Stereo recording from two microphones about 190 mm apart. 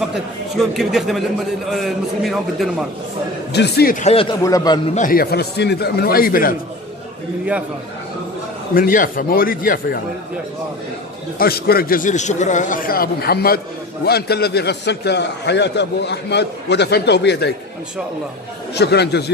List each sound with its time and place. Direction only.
0.1 s a man's voice: centre (ahead or behind)
3.5 s a man's voice: 55° left (ahead or behind)
4.0 s speech: 30° left (ahead or behind)
4.4 s a man's voice: 20° left (ahead or behind)
4.9 s a man's voice: 45° left (ahead or behind)
8.7 s a man's voice: 45° left (ahead or behind)
11.3 s a man's voice: 55° left (ahead or behind)
18.8 s a man's voice: 60° left (ahead or behind)